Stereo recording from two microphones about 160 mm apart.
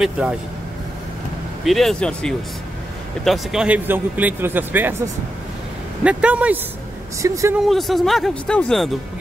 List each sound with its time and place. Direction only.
0.0 s speech: 5° right (ahead or behind)
1.6 s speech: centre (ahead or behind)
3.3 s speech: 5° right (ahead or behind)
7.2 s speech: 20° right (ahead or behind)
7.5 s speech: centre (ahead or behind)